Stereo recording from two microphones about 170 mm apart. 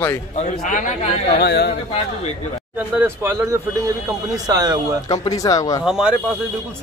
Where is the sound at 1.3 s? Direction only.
75° left (ahead or behind).